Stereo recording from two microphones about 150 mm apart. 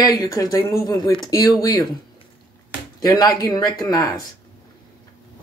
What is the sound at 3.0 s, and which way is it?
Speech, 25° left (ahead or behind).